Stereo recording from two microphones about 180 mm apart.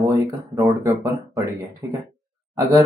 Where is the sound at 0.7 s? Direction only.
20° right (ahead or behind).